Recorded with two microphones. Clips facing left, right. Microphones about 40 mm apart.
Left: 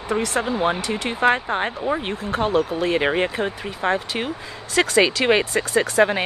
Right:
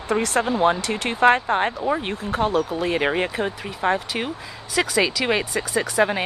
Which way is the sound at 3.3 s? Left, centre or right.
Left.